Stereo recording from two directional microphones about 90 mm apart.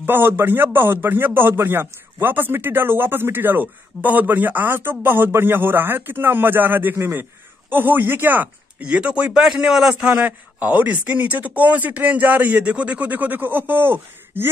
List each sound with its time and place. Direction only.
0.0 s a man's voice: 25° right (ahead or behind)